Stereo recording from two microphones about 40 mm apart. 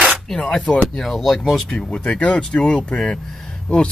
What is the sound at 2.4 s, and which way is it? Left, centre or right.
Speech, centre.